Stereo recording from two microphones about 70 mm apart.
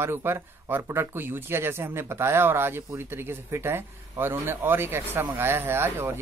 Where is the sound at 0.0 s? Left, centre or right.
Right.